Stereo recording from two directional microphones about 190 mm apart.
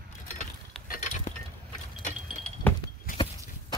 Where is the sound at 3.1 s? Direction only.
50° left (ahead or behind).